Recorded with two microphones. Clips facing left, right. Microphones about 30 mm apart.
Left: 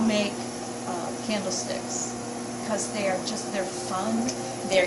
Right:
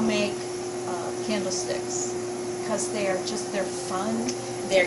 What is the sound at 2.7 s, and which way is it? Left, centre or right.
Speech, centre.